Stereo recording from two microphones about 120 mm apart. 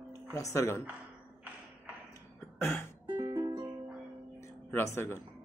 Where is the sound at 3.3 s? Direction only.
40° right (ahead or behind).